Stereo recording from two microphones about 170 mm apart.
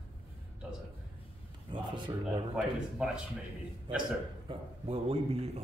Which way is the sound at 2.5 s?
5° right (ahead or behind).